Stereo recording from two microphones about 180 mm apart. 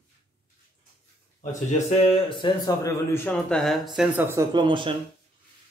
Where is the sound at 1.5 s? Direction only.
40° left (ahead or behind).